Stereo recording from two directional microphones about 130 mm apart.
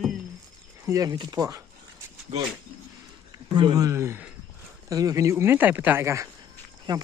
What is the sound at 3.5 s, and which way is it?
Speech, 35° right (ahead or behind).